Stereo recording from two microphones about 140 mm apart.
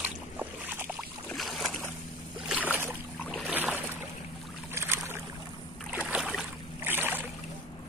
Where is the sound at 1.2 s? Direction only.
Centre (ahead or behind).